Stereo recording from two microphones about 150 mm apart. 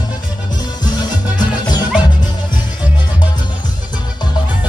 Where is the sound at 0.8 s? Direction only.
30° left (ahead or behind).